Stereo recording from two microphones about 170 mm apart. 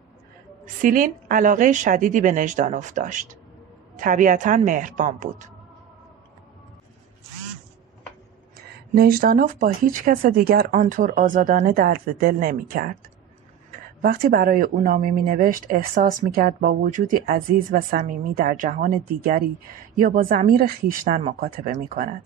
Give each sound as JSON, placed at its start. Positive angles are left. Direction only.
{"t": 0.7, "sound": "a woman's voice", "side_deg": -50}
{"t": 8.5, "sound": "speech", "side_deg": -65}